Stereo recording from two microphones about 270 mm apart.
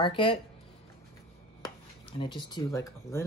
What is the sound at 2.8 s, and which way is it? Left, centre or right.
Speech, centre.